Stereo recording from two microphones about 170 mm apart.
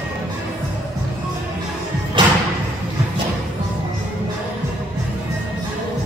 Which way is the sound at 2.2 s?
25° right (ahead or behind).